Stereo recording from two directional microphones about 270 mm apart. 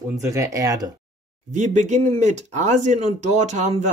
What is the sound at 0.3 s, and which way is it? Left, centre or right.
Speech, centre.